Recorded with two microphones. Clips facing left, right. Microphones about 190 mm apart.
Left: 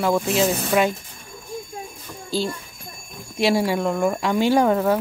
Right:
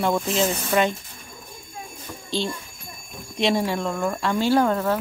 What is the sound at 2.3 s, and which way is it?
Speech, 5° left (ahead or behind).